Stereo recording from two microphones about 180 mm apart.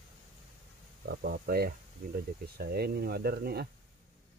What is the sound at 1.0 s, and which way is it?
Speech, 55° right (ahead or behind).